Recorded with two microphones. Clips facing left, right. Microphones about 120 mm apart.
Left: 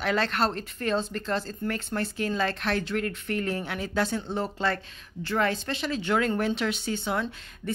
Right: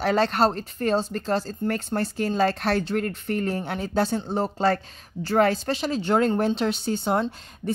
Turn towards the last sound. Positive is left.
turn(degrees=-35)  # may be behind; listen again after turning